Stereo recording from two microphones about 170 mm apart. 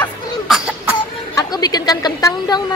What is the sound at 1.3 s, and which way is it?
Chatter, 25° left (ahead or behind).